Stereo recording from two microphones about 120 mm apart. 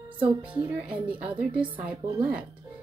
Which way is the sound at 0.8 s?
10° right (ahead or behind).